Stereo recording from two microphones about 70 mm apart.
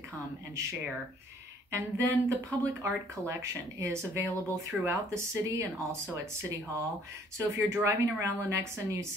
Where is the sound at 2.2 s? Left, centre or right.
Right.